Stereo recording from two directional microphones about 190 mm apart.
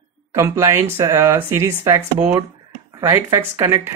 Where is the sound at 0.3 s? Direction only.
15° right (ahead or behind).